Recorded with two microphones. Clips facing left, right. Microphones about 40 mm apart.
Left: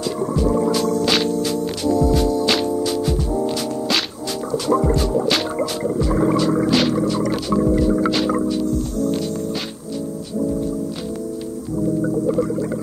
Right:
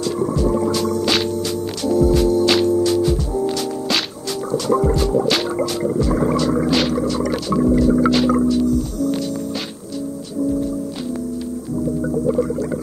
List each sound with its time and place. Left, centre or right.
0.0 s music: centre
2.0 s music: centre
2.4 s music: centre
12.3 s music: centre